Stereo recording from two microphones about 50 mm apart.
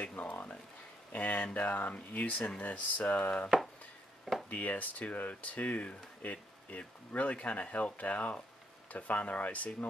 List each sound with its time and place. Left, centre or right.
0.0 s speech: left
4.5 s speech: left